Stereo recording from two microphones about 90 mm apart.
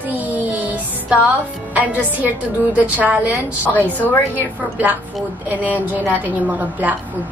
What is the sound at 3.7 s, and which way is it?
Speech, 20° left (ahead or behind).